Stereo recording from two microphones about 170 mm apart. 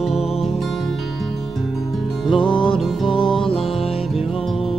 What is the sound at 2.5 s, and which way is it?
Music, 30° left (ahead or behind).